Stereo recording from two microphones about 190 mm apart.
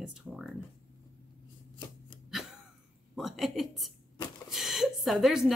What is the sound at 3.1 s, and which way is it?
Speech, centre (ahead or behind).